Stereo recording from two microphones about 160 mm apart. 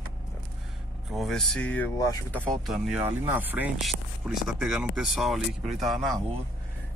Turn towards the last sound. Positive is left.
turn(degrees=0)  # may be behind; listen again after turning